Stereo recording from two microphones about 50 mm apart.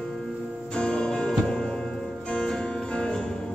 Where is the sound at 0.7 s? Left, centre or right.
Centre.